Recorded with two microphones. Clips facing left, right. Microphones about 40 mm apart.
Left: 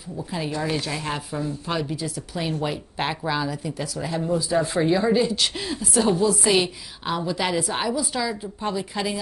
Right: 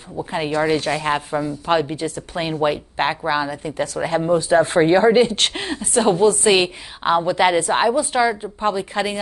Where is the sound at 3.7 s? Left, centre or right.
Right.